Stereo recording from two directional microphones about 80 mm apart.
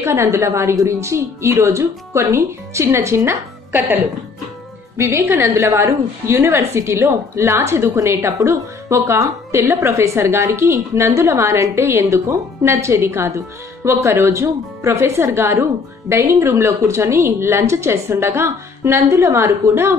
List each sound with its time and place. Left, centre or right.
0.0 s a woman's voice: right
5.5 s a woman's voice: right